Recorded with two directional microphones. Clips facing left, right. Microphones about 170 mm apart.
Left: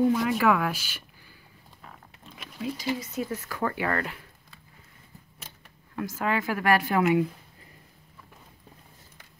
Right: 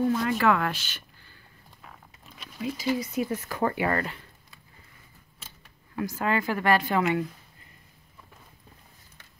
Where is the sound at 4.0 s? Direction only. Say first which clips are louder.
Right 1 dB; centre (ahead or behind).